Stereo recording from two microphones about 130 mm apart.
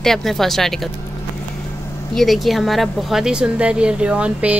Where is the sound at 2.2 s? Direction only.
Centre (ahead or behind).